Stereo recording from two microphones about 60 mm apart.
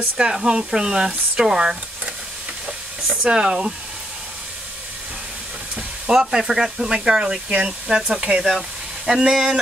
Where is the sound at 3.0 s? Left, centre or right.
Centre.